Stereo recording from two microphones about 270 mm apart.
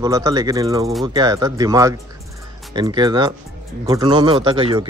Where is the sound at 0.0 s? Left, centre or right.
Centre.